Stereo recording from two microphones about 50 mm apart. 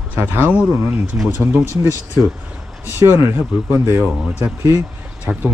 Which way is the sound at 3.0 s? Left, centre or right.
Right.